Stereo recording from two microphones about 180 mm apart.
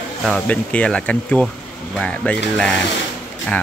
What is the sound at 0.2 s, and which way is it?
Speech, 5° left (ahead or behind).